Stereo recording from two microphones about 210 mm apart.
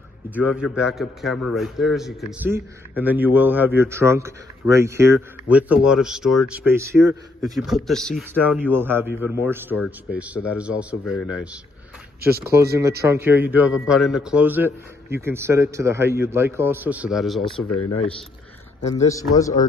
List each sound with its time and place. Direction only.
0.3 s a man's voice: 5° right (ahead or behind)
7.4 s a man's voice: centre (ahead or behind)
8.6 s a man's voice: 10° right (ahead or behind)
12.2 s speech: 45° right (ahead or behind)
13.0 s a man's voice: 10° right (ahead or behind)
19.0 s a man's voice: 15° left (ahead or behind)